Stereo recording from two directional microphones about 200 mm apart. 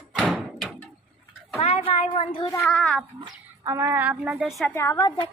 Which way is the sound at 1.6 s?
30° left (ahead or behind).